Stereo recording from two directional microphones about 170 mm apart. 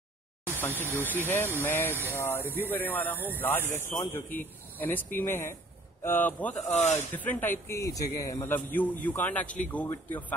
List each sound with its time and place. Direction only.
0.6 s a man's voice: 10° left (ahead or behind)
6.7 s speech: 45° left (ahead or behind)
7.1 s a man's voice: 10° left (ahead or behind)